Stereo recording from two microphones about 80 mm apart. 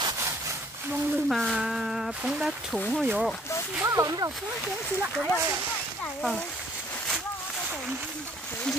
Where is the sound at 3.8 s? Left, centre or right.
Right.